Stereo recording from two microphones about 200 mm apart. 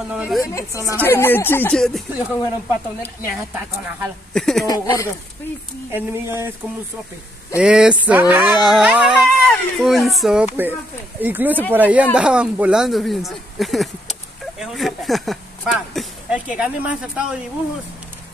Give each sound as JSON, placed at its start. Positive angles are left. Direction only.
{"t": 0.1, "sound": "speech", "side_deg": -5}
{"t": 0.6, "sound": "speech", "side_deg": 15}
{"t": 3.2, "sound": "speech", "side_deg": -10}
{"t": 4.3, "sound": "speech", "side_deg": 0}
{"t": 4.6, "sound": "speech", "side_deg": 15}
{"t": 5.9, "sound": "speech", "side_deg": -10}
{"t": 7.5, "sound": "speech", "side_deg": -5}